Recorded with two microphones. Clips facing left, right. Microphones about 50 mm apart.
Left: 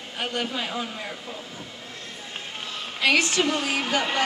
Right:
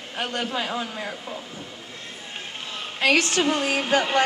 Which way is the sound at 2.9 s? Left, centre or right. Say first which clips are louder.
Right 1 dB; right.